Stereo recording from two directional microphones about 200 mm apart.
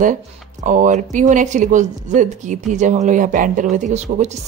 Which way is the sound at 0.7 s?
40° right (ahead or behind).